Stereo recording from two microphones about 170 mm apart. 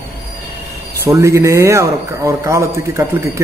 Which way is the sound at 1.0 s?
15° right (ahead or behind).